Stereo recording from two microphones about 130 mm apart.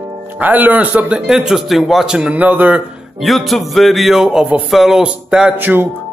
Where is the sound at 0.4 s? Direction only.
15° right (ahead or behind).